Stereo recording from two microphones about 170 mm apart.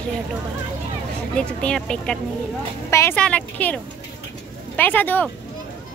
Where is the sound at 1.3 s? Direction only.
5° left (ahead or behind).